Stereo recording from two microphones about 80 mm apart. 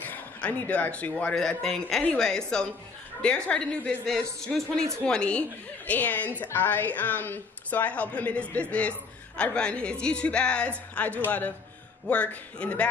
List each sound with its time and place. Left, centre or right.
0.0 s a man's voice: left